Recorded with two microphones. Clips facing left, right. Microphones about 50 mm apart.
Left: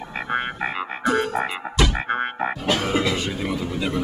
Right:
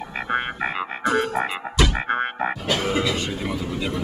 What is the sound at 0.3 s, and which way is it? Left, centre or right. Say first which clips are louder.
Frog: right 1 dB; centre.